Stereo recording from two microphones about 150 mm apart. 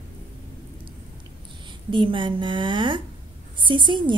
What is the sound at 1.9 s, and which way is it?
A woman's voice, 35° right (ahead or behind).